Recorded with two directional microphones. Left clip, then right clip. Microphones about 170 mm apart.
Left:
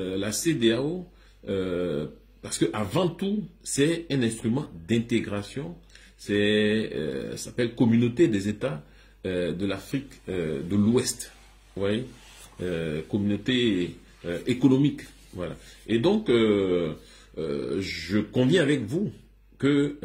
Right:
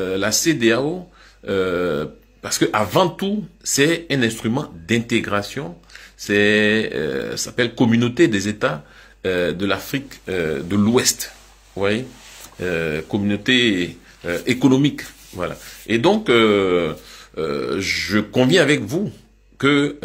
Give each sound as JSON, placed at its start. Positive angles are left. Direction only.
{"t": 0.0, "sound": "a man's voice", "side_deg": 15}
{"t": 12.5, "sound": "a man's voice", "side_deg": 20}